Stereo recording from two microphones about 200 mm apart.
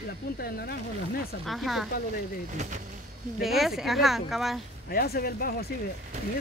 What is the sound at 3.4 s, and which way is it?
Speech, centre (ahead or behind).